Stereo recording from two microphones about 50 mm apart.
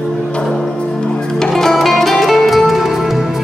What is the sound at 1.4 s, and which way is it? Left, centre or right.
Music, centre.